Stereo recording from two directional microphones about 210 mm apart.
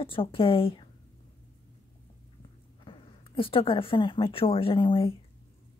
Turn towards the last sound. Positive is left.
turn(degrees=25)  # may be behind; listen again after turning